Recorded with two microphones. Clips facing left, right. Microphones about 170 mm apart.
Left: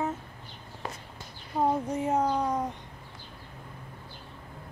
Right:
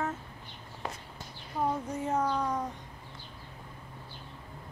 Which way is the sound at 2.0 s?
20° left (ahead or behind).